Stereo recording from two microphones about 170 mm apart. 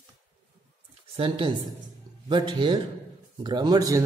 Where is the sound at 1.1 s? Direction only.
30° right (ahead or behind).